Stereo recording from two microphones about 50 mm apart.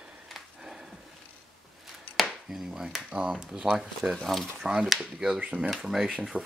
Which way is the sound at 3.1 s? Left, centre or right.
Centre.